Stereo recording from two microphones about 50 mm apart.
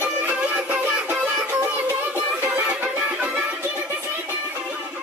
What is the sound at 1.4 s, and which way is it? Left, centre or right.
Music, right.